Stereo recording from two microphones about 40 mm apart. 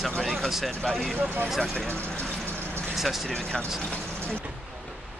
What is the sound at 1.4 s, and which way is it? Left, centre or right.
Speech, centre.